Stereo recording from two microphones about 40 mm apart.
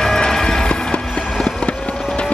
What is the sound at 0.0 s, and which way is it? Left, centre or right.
Music, centre.